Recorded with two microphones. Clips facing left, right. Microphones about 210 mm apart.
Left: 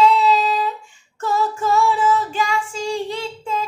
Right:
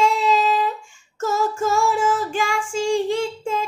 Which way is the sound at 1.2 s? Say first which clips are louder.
Even; 45° right (ahead or behind).